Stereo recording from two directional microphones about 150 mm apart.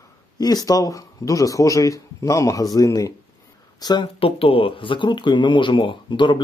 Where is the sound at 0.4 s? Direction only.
25° left (ahead or behind).